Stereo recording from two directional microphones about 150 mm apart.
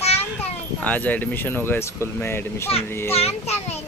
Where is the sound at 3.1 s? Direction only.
40° left (ahead or behind).